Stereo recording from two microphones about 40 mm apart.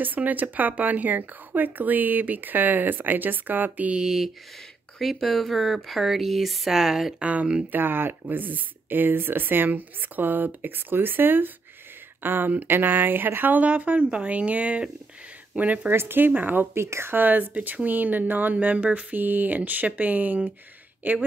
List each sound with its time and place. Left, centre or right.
0.0 s speech: right
4.0 s speech: centre
5.0 s speech: centre
7.2 s speech: right
7.7 s speech: right
15.9 s speech: right
16.3 s speech: right
16.7 s speech: right
17.2 s speech: right
19.1 s speech: right